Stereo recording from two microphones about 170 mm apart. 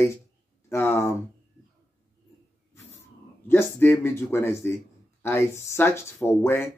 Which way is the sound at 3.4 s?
15° left (ahead or behind).